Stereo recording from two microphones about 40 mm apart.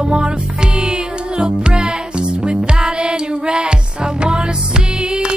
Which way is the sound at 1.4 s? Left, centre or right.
Right.